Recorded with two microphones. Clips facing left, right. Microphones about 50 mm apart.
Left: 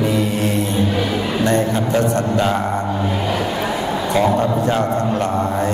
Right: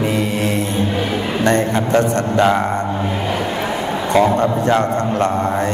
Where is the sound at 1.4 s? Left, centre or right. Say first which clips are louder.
Right 2 dB; right.